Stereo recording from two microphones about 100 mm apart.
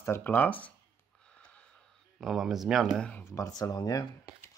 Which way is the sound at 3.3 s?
35° left (ahead or behind).